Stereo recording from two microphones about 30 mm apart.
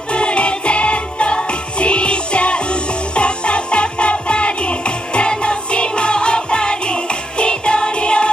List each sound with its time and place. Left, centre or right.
0.1 s music: left